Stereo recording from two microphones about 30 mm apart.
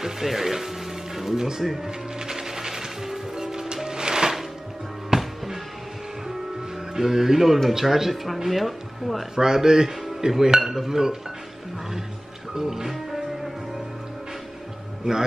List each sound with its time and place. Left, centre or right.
0.0 s speech: centre
1.6 s speech: centre
1.9 s music: right
7.0 s a man's voice: centre
9.3 s a man's voice: right
12.5 s music: centre